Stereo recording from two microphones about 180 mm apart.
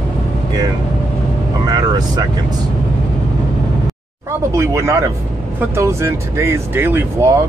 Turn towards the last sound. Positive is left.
turn(degrees=-10)  # may be behind; listen again after turning